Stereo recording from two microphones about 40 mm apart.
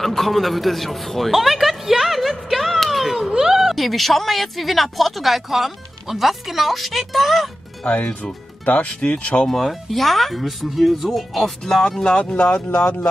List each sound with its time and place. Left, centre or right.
0.0 s a sound: centre
3.2 s a woman's voice: centre
7.8 s speech: left
9.0 s speech: left
9.5 s speech: centre
12.2 s speech: left